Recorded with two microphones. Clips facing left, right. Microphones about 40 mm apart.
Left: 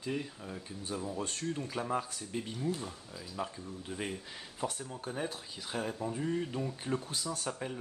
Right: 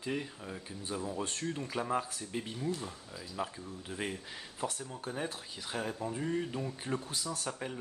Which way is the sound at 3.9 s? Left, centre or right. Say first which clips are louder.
Right 1 dB; centre.